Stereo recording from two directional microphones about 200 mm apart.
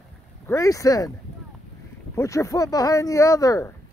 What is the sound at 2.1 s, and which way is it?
Speech, 15° left (ahead or behind).